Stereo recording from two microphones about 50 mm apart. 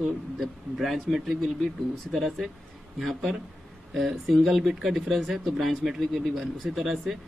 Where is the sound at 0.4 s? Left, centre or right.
Centre.